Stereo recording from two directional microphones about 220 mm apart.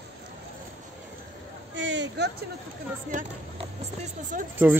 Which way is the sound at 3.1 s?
35° right (ahead or behind).